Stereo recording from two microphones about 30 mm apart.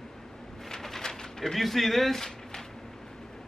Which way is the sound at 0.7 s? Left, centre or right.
Centre.